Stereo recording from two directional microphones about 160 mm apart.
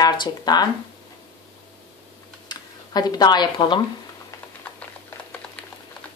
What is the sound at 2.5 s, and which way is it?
Speech, 25° left (ahead or behind).